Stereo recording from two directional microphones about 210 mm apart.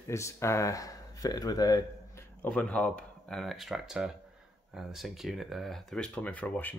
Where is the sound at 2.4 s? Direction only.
5° left (ahead or behind).